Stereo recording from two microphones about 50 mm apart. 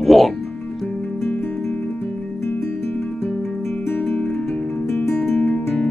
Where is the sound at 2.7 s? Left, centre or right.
Left.